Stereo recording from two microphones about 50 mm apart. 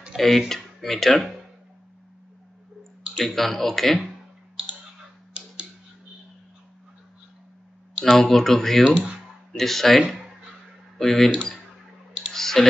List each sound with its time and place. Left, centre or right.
0.1 s a sound: centre
0.5 s speech: centre
3.3 s speech: centre
5.4 s tick-tock: centre
8.0 s speech: centre
8.9 s speech: right
9.5 s speech: centre